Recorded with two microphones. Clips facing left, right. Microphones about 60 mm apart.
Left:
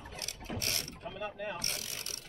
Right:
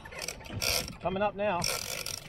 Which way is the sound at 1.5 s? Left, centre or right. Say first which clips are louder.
Right 7 dB; right.